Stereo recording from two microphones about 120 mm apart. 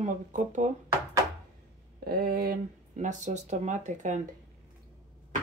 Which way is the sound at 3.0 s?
90° right.